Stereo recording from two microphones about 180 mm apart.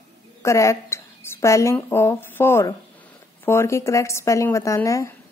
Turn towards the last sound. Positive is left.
turn(degrees=15)  # may be behind; listen again after turning